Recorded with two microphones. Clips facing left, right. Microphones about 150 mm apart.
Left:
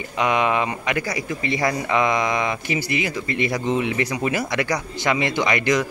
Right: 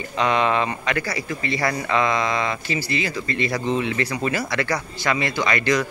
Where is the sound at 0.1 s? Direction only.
15° left (ahead or behind).